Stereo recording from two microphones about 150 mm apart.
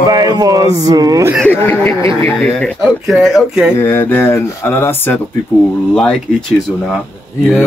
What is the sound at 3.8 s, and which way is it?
Speech, 15° left (ahead or behind).